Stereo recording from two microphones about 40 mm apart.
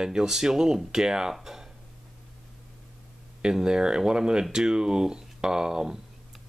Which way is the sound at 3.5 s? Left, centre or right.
Centre.